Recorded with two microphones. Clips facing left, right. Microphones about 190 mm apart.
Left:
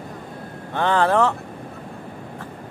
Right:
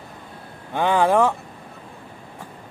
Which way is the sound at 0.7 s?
10° right (ahead or behind).